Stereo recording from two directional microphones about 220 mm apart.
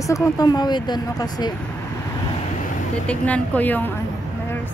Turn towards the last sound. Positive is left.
turn(degrees=10)  # may be behind; listen again after turning